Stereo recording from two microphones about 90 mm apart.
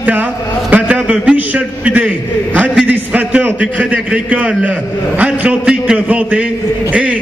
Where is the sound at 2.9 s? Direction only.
15° right (ahead or behind).